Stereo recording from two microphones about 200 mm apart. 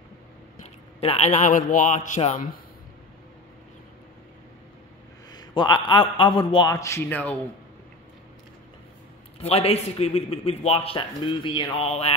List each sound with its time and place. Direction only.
1.0 s a man's voice: 30° left (ahead or behind)
5.3 s a sound: 20° left (ahead or behind)
5.9 s a man's voice: 25° left (ahead or behind)
9.4 s a man's voice: 30° left (ahead or behind)